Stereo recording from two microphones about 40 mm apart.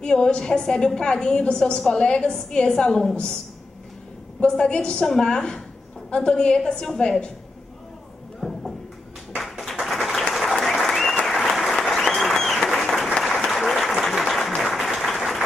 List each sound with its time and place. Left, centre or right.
0.0 s a woman's voice: left
4.5 s a woman's voice: centre
8.4 s clip-clop: centre
9.4 s a sound: centre
10.3 s applause: centre
13.3 s applause: centre